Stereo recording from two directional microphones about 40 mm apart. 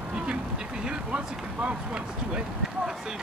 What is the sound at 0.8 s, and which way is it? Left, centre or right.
Speech, right.